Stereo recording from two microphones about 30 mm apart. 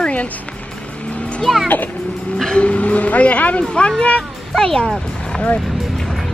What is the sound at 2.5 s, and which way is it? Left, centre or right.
Speech, left.